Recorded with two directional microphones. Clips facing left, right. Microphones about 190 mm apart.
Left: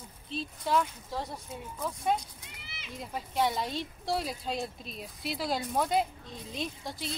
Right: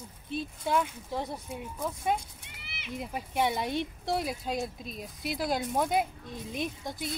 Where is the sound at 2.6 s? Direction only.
65° right (ahead or behind).